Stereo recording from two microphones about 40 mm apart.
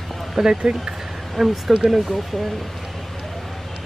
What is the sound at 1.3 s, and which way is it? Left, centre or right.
Speech, centre.